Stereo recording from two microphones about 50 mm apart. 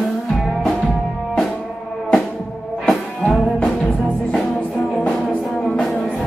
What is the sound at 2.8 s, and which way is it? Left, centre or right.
Music, centre.